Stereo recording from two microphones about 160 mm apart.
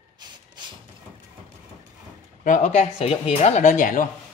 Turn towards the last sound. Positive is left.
turn(degrees=55)  # may be behind; listen again after turning